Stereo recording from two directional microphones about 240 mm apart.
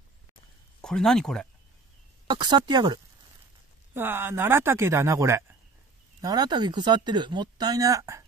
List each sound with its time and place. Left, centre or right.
0.7 s speech: centre
2.2 s speech: centre